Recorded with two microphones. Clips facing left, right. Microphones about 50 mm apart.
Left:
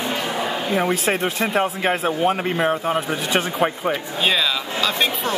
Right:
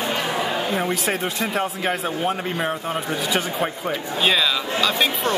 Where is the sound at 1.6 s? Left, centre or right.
Left.